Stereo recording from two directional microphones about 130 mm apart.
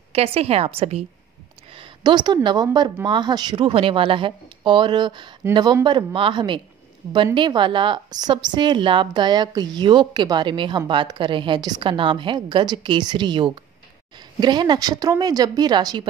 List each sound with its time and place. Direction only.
0.1 s a woman's voice: 50° right (ahead or behind)
1.7 s a woman's voice: 40° right (ahead or behind)